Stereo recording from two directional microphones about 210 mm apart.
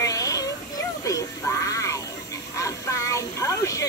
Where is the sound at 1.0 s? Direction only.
15° left (ahead or behind).